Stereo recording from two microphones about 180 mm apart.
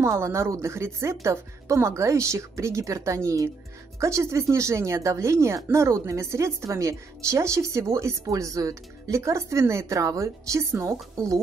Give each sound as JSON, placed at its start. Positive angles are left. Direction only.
{"t": 0.2, "sound": "a woman's voice", "side_deg": -15}